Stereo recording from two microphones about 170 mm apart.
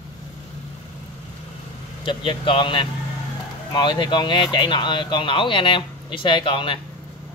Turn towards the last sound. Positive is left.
turn(degrees=30)  # may be behind; listen again after turning